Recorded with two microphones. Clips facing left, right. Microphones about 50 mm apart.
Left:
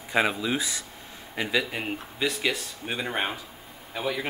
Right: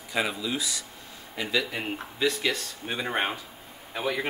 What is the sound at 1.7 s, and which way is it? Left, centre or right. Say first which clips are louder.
Speech: even; centre.